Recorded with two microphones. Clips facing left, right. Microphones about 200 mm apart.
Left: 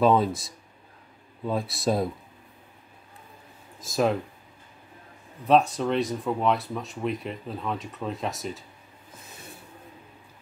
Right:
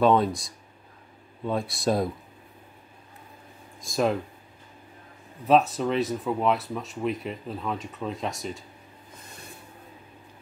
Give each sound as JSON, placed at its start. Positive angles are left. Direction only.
{"t": 0.0, "sound": "speech", "side_deg": 0}
{"t": 3.8, "sound": "speech", "side_deg": 0}
{"t": 5.5, "sound": "speech", "side_deg": 0}